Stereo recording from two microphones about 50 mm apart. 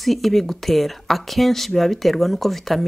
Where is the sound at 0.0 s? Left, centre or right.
Centre.